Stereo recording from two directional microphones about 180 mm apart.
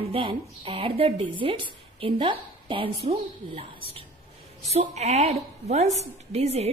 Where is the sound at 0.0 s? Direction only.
30° right (ahead or behind).